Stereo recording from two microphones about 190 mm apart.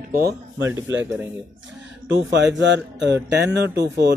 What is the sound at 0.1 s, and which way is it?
Speech, 55° right (ahead or behind).